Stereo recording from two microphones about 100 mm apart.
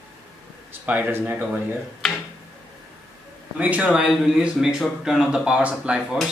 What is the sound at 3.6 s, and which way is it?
Speech, 15° right (ahead or behind).